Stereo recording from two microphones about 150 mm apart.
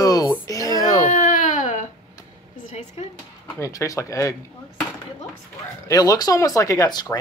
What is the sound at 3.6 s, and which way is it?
Speech, 20° left (ahead or behind).